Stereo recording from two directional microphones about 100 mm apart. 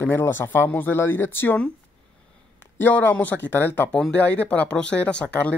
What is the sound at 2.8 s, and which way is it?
Speech, 20° left (ahead or behind).